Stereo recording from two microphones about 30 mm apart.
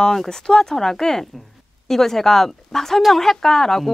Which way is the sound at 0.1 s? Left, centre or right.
Centre.